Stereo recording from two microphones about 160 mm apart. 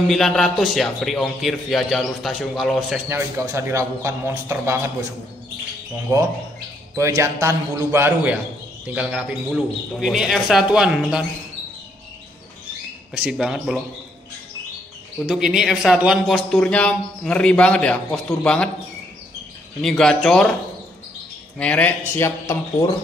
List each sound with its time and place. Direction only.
0.1 s speech: centre (ahead or behind)
3.1 s a man's voice: 15° right (ahead or behind)
6.1 s a man's voice: 15° right (ahead or behind)
13.1 s speech: 5° right (ahead or behind)
15.2 s speech: 5° right (ahead or behind)
19.8 s speech: 5° left (ahead or behind)
21.5 s speech: 10° left (ahead or behind)